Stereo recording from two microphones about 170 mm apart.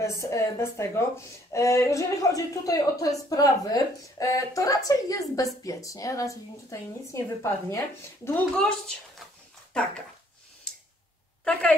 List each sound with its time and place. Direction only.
0.0 s a woman's voice: 15° left (ahead or behind)